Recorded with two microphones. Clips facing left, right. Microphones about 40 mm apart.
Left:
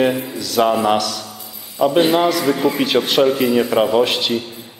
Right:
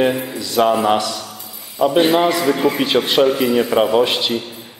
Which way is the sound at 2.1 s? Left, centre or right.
Right.